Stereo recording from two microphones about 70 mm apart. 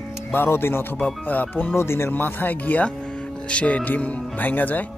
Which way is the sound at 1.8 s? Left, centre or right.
Left.